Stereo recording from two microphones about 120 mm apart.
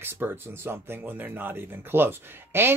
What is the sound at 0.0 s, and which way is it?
Speech, 20° right (ahead or behind).